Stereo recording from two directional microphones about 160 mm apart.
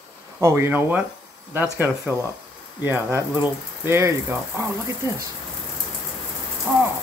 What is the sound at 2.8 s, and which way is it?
Speech, 15° right (ahead or behind).